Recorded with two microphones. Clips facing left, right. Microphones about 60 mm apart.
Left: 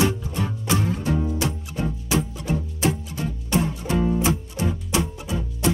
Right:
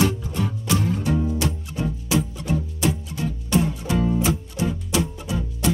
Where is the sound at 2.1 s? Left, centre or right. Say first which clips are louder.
Right 1 dB; left.